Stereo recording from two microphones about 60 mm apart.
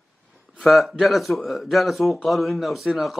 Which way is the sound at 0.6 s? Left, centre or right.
Centre.